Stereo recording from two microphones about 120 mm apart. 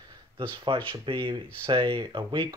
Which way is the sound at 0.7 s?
40° right (ahead or behind).